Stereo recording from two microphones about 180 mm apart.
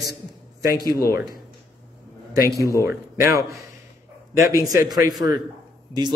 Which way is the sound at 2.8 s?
15° right (ahead or behind).